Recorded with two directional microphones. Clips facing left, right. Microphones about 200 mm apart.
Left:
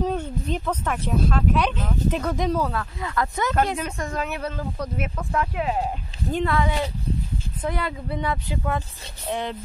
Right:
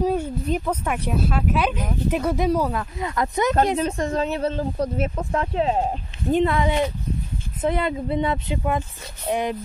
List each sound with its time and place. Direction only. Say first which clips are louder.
0.0 s speech: right 3 dB; 10° right (ahead or behind)
3.7 s speech: right 6 dB; 35° right (ahead or behind); by 9.6 s 15° right (ahead or behind)